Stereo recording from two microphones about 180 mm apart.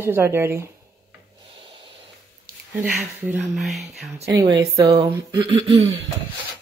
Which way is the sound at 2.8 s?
10° right (ahead or behind).